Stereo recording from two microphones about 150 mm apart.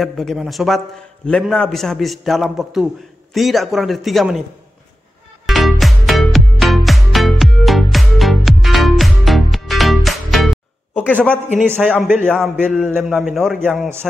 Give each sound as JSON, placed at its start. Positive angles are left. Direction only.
{"t": 0.0, "sound": "a man's voice", "side_deg": 0}
{"t": 5.5, "sound": "music", "side_deg": 0}
{"t": 11.0, "sound": "a man's voice", "side_deg": 10}
{"t": 11.6, "sound": "a man's voice", "side_deg": -10}
{"t": 12.6, "sound": "a man's voice", "side_deg": 5}